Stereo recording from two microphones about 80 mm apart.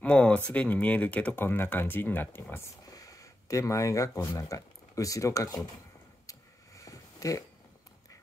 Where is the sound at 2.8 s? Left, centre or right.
Left.